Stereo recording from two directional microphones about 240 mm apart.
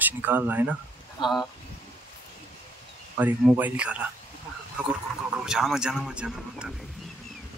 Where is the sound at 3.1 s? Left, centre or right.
Centre.